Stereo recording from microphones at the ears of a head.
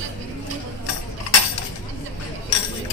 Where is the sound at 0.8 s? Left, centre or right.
Left.